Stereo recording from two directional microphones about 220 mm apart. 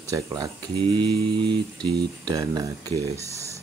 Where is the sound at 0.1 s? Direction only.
15° right (ahead or behind).